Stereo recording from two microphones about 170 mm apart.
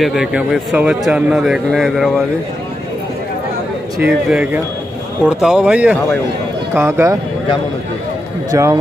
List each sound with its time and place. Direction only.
0.0 s a man's voice: centre (ahead or behind)
4.0 s a man's voice: 5° right (ahead or behind)
8.5 s speech: 15° right (ahead or behind)